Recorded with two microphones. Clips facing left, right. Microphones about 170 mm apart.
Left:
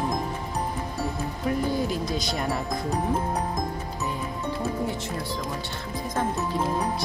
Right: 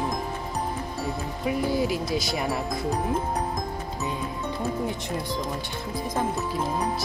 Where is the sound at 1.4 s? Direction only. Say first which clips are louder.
Right 1 dB; 10° right (ahead or behind).